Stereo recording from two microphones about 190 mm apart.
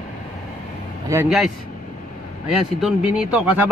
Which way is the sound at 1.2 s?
5° right (ahead or behind).